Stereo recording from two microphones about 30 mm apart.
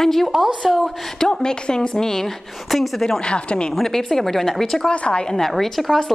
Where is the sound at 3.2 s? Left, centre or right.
Left.